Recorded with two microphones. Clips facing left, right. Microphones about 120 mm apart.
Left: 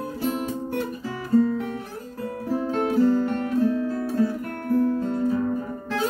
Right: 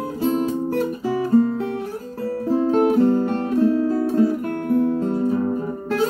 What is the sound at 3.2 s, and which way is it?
Guitar, 30° right (ahead or behind).